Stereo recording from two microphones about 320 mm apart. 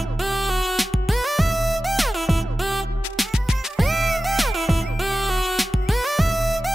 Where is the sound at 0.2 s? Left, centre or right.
Centre.